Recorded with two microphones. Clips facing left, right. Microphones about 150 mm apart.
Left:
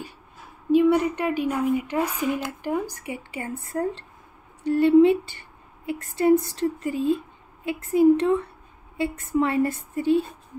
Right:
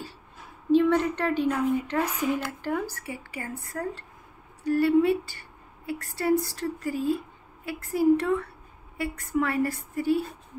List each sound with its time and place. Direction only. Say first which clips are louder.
0.7 s a woman's voice: left 3 dB; 10° left (ahead or behind)